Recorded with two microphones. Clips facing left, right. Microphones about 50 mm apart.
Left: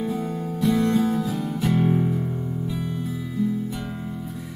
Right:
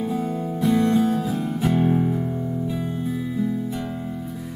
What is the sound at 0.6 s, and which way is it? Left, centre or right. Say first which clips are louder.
Music: right 1 dB; right.